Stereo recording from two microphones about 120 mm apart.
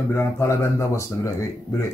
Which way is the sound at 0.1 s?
20° left (ahead or behind).